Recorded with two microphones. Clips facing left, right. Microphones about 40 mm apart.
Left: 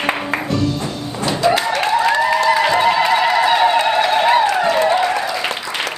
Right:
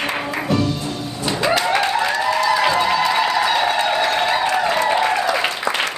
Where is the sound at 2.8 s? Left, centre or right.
Centre.